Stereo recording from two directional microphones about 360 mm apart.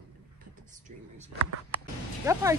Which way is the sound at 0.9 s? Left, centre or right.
Right.